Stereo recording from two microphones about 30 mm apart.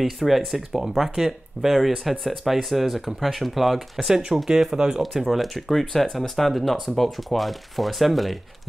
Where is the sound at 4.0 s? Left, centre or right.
Centre.